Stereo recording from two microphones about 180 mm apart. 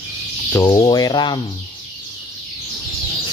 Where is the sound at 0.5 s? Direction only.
15° left (ahead or behind).